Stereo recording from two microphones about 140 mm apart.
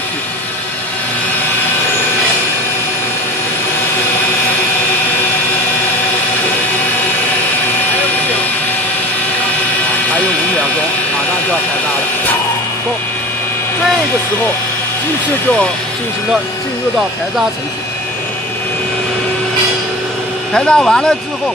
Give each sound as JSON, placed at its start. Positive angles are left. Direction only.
{"t": 20.5, "sound": "speech", "side_deg": 5}